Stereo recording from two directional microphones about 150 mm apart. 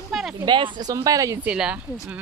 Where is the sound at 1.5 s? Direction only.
5° right (ahead or behind).